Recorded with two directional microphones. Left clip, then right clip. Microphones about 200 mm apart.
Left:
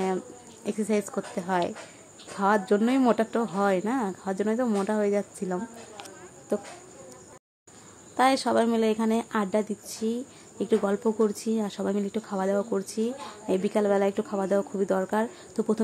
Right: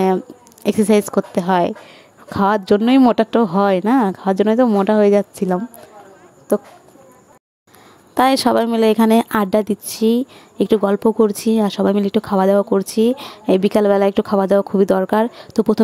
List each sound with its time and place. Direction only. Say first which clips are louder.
0.7 s a woman's voice: right 13 dB; 45° right (ahead or behind)
8.1 s speech: right 9 dB; 45° right (ahead or behind)